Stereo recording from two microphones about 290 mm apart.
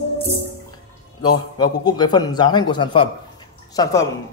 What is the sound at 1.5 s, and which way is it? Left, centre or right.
Speech, centre.